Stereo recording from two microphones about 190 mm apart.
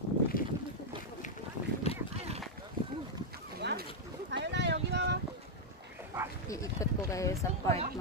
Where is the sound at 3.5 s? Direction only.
60° right (ahead or behind).